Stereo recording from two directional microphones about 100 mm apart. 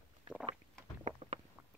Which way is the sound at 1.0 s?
90° right.